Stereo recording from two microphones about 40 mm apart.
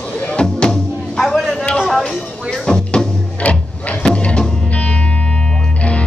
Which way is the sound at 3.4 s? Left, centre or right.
Left.